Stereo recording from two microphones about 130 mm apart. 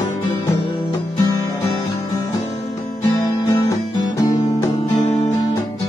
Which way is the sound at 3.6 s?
25° left (ahead or behind).